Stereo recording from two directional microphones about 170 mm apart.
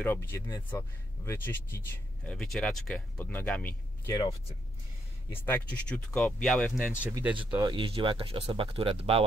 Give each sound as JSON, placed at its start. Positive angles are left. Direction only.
{"t": 0.0, "sound": "speech", "side_deg": 10}
{"t": 2.2, "sound": "speech", "side_deg": 5}
{"t": 4.1, "sound": "speech", "side_deg": 25}
{"t": 5.3, "sound": "speech", "side_deg": 10}
{"t": 7.3, "sound": "speech", "side_deg": -25}